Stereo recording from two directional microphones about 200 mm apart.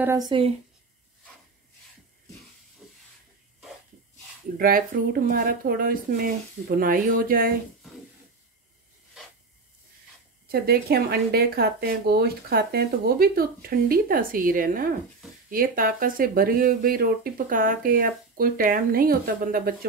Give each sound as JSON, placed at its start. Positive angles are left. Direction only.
{"t": 0.0, "sound": "speech", "side_deg": -15}
{"t": 2.8, "sound": "hiss", "side_deg": 0}
{"t": 4.6, "sound": "speech", "side_deg": -45}
{"t": 10.5, "sound": "speech", "side_deg": -50}